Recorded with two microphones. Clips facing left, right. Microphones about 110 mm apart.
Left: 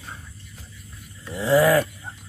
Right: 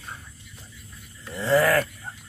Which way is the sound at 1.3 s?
15° left (ahead or behind).